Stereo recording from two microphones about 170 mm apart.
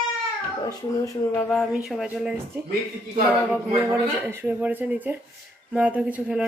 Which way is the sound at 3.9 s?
15° right (ahead or behind).